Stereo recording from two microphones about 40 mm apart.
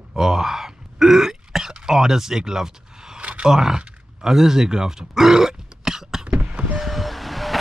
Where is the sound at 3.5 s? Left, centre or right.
Centre.